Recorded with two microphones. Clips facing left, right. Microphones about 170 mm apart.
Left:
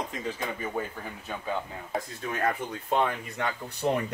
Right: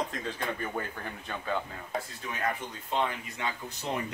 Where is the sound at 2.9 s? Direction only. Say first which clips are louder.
Left 3 dB; 55° left (ahead or behind).